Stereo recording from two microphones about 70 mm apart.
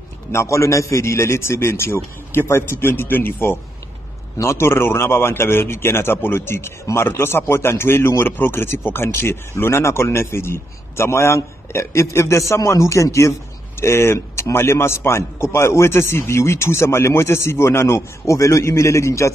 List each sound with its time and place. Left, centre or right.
0.3 s a man's voice: left